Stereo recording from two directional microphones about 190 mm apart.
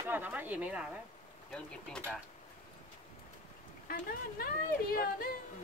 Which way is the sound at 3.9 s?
50° left (ahead or behind).